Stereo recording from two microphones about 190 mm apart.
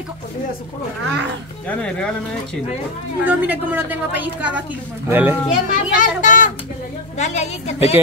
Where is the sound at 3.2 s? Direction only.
10° right (ahead or behind).